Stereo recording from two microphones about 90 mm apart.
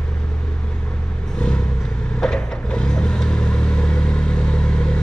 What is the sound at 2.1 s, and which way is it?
Vehicle, 10° left (ahead or behind).